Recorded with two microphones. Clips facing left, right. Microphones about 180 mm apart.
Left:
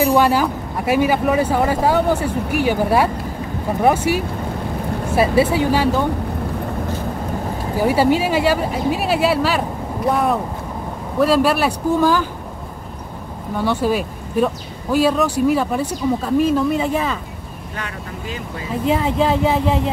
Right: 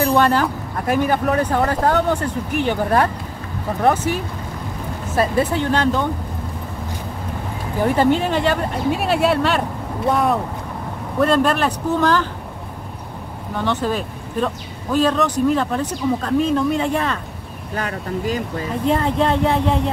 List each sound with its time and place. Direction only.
0.0 s speech: 5° left (ahead or behind)
7.8 s speech: 5° left (ahead or behind)
13.6 s speech: 10° left (ahead or behind)
17.7 s speech: 40° right (ahead or behind)
18.9 s speech: 5° left (ahead or behind)